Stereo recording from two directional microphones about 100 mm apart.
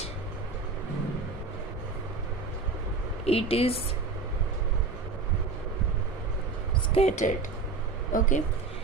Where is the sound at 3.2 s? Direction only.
80° left.